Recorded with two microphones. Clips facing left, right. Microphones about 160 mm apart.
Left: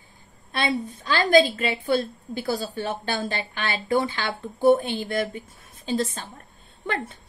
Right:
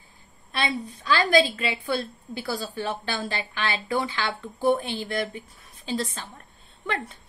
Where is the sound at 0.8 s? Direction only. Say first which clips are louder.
Even; 40° left (ahead or behind).